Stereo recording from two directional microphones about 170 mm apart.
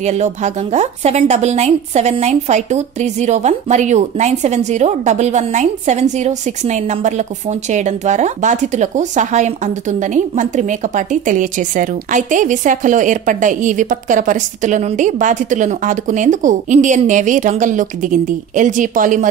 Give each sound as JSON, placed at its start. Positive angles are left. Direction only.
{"t": 0.0, "sound": "speech", "side_deg": -40}